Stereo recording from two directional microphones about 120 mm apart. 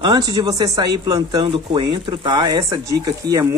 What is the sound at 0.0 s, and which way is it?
Speech, 35° right (ahead or behind).